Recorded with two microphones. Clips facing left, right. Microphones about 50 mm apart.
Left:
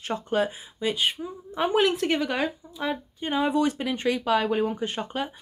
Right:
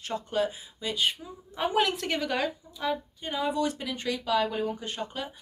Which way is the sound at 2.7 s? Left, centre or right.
Left.